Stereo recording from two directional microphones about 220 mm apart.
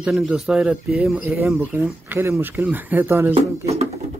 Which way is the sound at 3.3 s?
30° right (ahead or behind).